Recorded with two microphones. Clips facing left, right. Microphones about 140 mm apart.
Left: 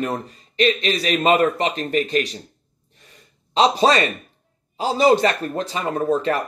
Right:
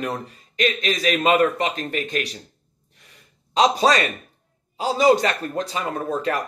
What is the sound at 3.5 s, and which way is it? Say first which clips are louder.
Speech: left 1 dB; 30° left (ahead or behind).